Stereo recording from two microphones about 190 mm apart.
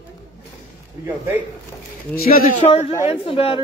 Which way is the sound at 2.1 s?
50° left (ahead or behind).